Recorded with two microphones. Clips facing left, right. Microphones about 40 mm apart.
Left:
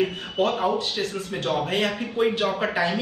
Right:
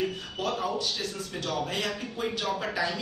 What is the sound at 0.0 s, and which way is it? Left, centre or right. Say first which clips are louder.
A man's voice: left 7 dB; left.